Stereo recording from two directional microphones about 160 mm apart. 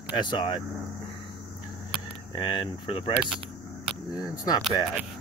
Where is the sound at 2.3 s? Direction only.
30° left (ahead or behind).